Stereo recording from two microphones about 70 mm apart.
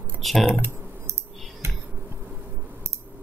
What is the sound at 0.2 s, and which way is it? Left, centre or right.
Speech, centre.